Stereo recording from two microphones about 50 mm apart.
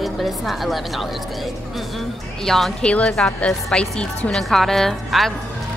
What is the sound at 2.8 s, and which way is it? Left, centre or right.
Speech, left.